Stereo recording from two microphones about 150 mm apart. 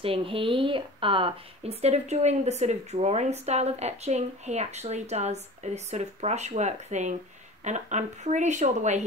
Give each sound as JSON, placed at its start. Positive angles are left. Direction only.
{"t": 0.0, "sound": "speech", "side_deg": -40}